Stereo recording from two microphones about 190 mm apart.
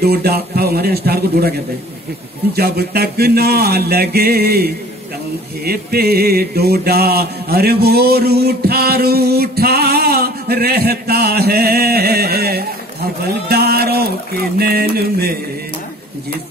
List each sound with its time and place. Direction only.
0.0 s mantra: 55° right (ahead or behind)
2.5 s mantra: 55° right (ahead or behind)